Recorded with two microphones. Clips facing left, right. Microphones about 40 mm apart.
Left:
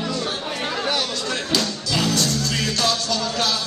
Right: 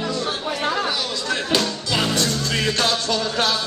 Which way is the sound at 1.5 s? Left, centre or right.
Right.